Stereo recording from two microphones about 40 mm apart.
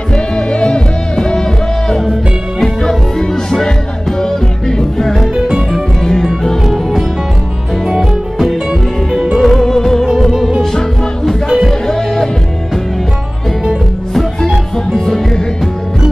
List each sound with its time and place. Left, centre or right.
0.1 s music: left
2.6 s music: centre
5.3 s music: centre
6.7 s music: centre
9.4 s music: centre
11.4 s music: centre
14.1 s music: centre